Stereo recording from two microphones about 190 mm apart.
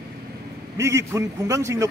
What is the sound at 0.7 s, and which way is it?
A man's voice, 15° right (ahead or behind).